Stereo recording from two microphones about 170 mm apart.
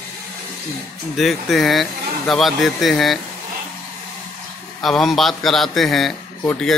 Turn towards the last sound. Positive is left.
turn(degrees=5)  # may be behind; listen again after turning